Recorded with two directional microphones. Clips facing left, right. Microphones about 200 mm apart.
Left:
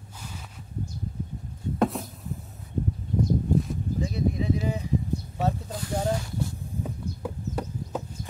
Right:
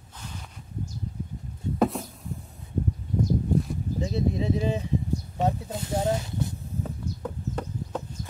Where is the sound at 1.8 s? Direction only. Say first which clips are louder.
Right 1 dB; centre (ahead or behind).